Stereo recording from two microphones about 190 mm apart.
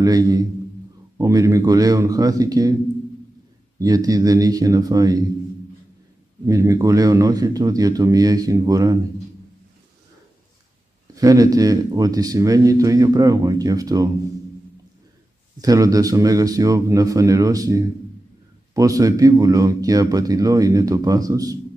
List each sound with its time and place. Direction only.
0.0 s speech: 20° right (ahead or behind)
3.8 s speech: 20° right (ahead or behind)
6.4 s speech: 15° right (ahead or behind)
11.1 s speech: 20° right (ahead or behind)
15.6 s speech: 20° right (ahead or behind)